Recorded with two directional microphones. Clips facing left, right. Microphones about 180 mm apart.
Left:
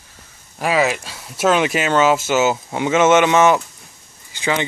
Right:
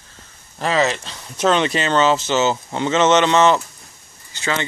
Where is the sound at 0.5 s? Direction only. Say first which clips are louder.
Left 1 dB; 10° left (ahead or behind).